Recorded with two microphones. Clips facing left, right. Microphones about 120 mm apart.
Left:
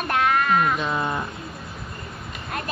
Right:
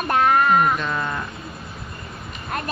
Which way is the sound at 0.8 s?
20° left (ahead or behind).